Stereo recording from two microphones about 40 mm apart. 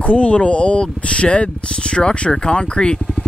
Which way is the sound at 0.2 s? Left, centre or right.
Left.